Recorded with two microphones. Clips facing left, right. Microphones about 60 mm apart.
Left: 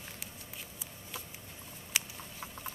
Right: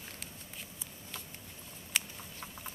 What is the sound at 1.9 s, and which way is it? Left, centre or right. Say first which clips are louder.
Patter: even; centre.